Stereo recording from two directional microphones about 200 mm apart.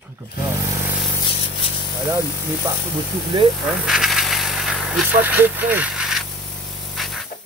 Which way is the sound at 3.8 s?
Centre (ahead or behind).